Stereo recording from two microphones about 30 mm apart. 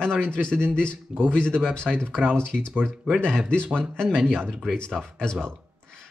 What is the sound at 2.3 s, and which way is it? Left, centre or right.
Speech, left.